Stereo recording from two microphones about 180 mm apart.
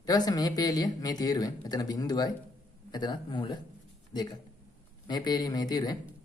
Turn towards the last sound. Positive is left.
turn(degrees=20)  # may be behind; listen again after turning